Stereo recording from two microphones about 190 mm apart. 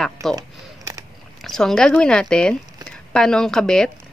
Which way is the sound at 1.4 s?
5° left (ahead or behind).